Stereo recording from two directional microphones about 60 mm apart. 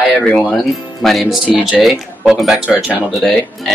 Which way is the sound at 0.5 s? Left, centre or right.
Centre.